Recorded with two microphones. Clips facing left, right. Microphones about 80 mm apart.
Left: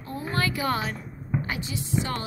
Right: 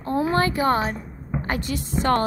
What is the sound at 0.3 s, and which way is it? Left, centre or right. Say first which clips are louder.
Speech: right 4 dB; right.